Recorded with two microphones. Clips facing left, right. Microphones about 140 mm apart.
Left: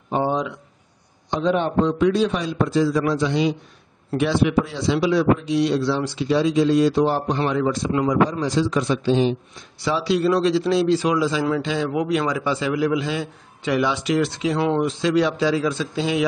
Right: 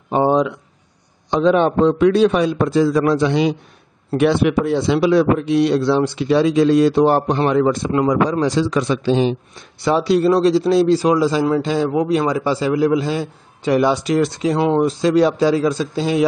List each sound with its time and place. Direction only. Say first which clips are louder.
0.1 s a sound: right 6 dB; 65° right (ahead or behind)
1.3 s a man's voice: right 6 dB; 90° right; by 8.2 s 50° right (ahead or behind)
8.3 s a man's voice: right 4 dB; 70° right (ahead or behind); by 9.7 s 90° right
9.8 s a man's voice: right 5 dB; 50° right (ahead or behind)